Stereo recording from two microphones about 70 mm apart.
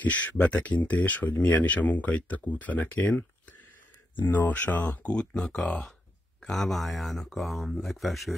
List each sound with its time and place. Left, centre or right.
0.0 s speech: left
4.3 s speech: left; by 8.4 s centre